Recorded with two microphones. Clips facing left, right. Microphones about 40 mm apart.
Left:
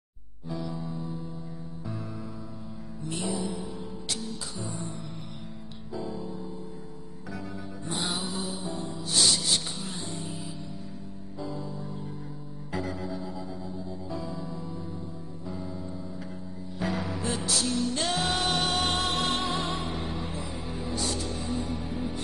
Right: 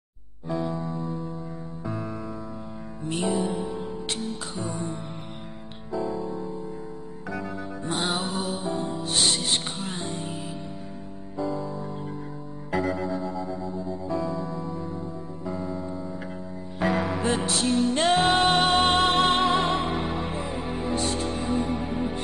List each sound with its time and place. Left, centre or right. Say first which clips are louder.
0.7 s music: right 5 dB; centre
3.0 s music: right 6 dB; right
5.9 s music: right 7 dB; centre
7.8 s music: right 5 dB; right
11.3 s music: right 8 dB; centre
12.7 s music: right 7 dB; centre
16.8 s music: right 6 dB; right